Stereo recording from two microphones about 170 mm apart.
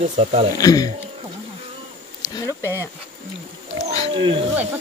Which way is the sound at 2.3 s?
20° left (ahead or behind).